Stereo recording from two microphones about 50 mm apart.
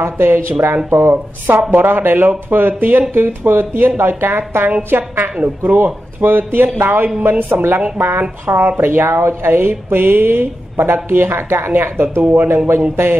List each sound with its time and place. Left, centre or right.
0.0 s a woman's voice: right
1.7 s a woman's voice: right
6.2 s a woman's voice: right
12.2 s speech: right
12.9 s a woman's voice: right